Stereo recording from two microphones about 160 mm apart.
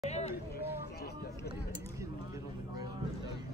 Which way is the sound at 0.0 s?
45° left (ahead or behind).